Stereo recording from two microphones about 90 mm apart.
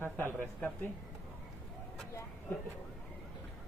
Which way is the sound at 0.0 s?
25° right (ahead or behind).